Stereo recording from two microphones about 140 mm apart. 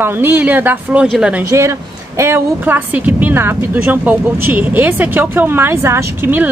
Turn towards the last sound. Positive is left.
turn(degrees=-15)  # may be behind; listen again after turning